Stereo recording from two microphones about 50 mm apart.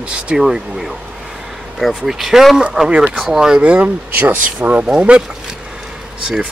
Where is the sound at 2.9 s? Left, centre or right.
Right.